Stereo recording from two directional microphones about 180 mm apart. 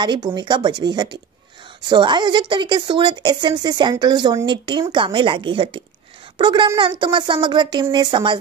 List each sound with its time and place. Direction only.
0.0 s speech: 25° right (ahead or behind)